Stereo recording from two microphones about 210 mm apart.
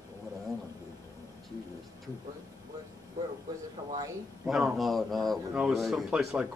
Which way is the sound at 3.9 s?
15° right (ahead or behind).